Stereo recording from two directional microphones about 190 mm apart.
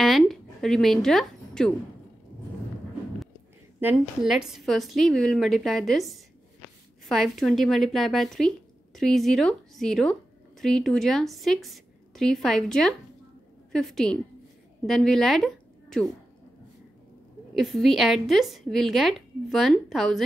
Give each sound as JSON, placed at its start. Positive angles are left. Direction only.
{"t": 0.0, "sound": "music", "side_deg": 0}
{"t": 3.8, "sound": "a woman's voice", "side_deg": -5}
{"t": 17.6, "sound": "speech", "side_deg": 0}